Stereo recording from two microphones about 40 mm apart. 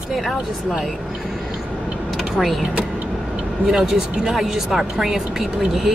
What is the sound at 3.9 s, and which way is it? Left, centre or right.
Speech, centre.